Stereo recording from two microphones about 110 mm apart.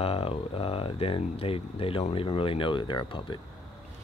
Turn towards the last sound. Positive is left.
turn(degrees=45)  # may be behind; listen again after turning